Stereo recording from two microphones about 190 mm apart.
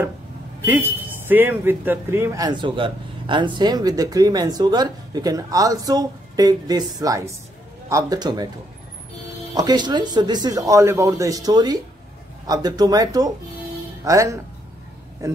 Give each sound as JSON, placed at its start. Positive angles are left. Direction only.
{"t": 0.7, "sound": "speech", "side_deg": -10}
{"t": 9.5, "sound": "speech", "side_deg": -20}